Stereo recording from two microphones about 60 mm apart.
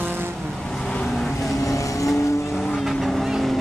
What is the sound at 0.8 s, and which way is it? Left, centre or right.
Vehicle, centre.